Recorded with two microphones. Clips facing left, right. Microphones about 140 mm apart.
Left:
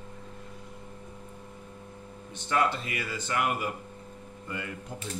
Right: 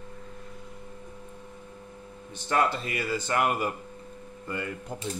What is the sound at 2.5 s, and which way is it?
Speech, 40° right (ahead or behind).